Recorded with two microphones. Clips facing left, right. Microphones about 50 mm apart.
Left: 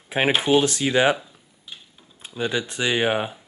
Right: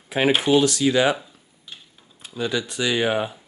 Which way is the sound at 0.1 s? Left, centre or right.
Left.